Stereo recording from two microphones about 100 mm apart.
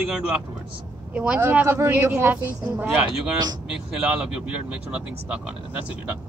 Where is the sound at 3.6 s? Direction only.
10° right (ahead or behind).